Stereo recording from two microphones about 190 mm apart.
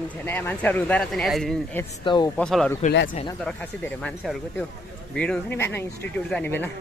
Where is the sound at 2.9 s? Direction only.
70° left (ahead or behind).